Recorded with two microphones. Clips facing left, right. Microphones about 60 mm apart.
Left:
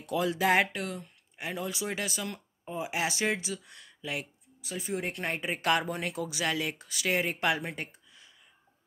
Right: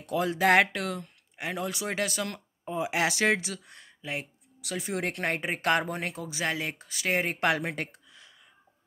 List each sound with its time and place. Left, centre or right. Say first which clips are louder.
0.0 s speech: right 2 dB; right
1.3 s speech: right 2 dB; right
3.6 s speech: even; right
4.6 s speech: right 2 dB; right
7.5 s speech: right 4 dB; right